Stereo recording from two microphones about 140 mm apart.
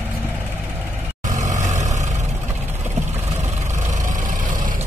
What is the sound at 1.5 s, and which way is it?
Vehicle, 55° right (ahead or behind).